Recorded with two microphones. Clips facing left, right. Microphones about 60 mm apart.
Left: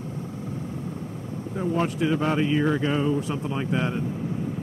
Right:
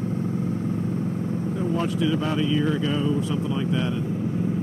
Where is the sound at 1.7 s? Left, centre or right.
Left.